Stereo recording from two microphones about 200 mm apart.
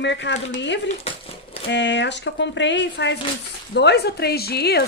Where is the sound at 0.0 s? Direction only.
60° left (ahead or behind).